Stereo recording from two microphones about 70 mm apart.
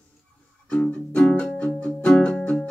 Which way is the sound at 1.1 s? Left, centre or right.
Centre.